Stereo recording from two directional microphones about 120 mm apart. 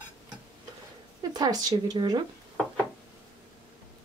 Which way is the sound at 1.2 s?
35° right (ahead or behind).